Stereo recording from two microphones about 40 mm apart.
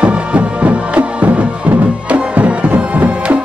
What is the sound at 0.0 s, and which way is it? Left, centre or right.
Music, right.